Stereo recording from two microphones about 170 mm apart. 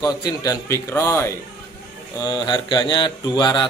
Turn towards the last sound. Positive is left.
turn(degrees=25)  # may be behind; listen again after turning